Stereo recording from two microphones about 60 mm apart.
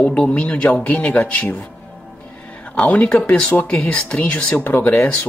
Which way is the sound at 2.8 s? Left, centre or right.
Left.